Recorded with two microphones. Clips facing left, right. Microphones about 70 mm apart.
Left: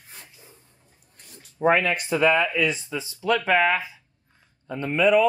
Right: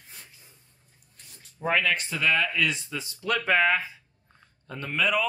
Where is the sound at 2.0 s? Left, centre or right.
Left.